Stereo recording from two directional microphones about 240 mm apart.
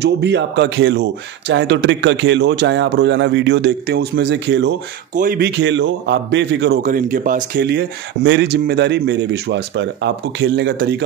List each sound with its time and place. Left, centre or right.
0.0 s a man's voice: right
5.1 s a man's voice: right
6.8 s a man's voice: right